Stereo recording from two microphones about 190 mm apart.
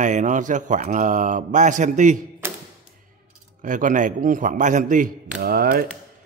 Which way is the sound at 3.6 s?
45° right (ahead or behind).